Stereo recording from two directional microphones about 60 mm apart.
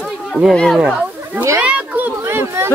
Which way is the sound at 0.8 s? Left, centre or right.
Centre.